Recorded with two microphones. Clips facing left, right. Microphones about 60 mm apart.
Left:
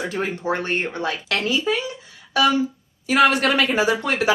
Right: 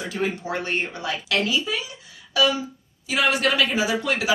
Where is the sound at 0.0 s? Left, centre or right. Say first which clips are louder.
Left 2 dB; left.